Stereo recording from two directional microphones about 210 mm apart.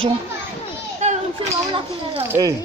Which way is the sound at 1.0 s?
35° right (ahead or behind).